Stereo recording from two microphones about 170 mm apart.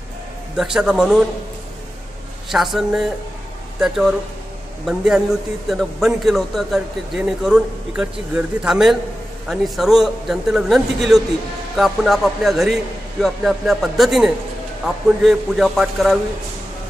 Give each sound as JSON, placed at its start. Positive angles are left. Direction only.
{"t": 0.6, "sound": "a man's voice", "side_deg": -5}
{"t": 2.5, "sound": "a man's voice", "side_deg": 0}